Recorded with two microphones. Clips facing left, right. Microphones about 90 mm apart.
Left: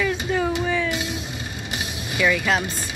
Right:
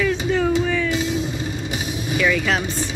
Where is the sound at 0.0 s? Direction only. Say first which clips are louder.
Right 3 dB; 15° left (ahead or behind).